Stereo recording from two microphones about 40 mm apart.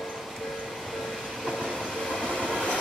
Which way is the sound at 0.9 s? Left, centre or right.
Centre.